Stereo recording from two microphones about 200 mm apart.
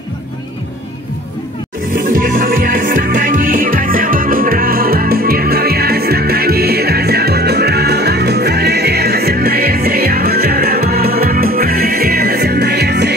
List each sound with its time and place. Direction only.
2.0 s music: 45° right (ahead or behind)